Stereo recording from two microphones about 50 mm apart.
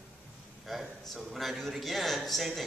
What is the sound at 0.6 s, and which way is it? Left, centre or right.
Speech, centre.